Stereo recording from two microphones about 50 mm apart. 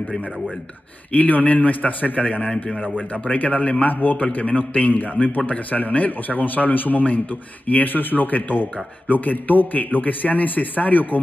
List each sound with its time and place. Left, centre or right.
1.1 s speech: left